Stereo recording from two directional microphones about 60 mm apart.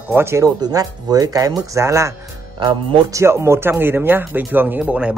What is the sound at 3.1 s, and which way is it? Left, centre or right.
Speech, right.